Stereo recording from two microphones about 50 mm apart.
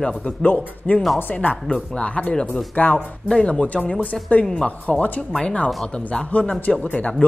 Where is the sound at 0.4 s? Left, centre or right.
Left.